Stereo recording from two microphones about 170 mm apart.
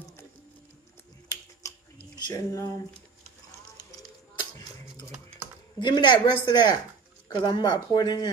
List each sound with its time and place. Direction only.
1.6 s chewing: 20° left (ahead or behind)
2.1 s speech: 20° left (ahead or behind)
5.8 s a woman's voice: 25° left (ahead or behind)